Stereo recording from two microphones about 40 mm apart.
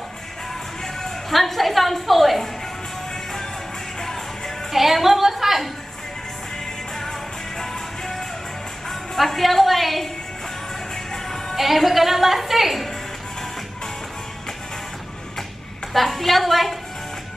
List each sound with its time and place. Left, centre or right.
1.3 s a woman's voice: centre
4.7 s a woman's voice: centre
7.0 s music: centre
8.8 s a woman's voice: centre
11.5 s a woman's voice: centre
15.9 s a woman's voice: centre